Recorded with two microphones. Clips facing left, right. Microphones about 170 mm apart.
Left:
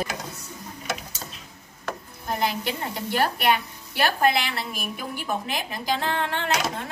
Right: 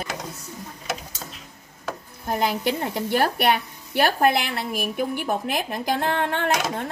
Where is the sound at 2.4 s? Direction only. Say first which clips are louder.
Right 4 dB; 50° right (ahead or behind).